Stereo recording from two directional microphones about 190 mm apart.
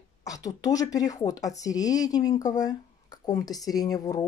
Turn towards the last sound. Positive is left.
turn(degrees=20)  # may be behind; listen again after turning